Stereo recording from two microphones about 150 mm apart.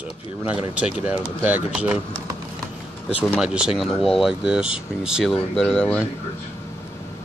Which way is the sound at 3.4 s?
5° right (ahead or behind).